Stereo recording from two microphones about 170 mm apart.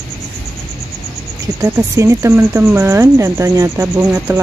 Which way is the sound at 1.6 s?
15° right (ahead or behind).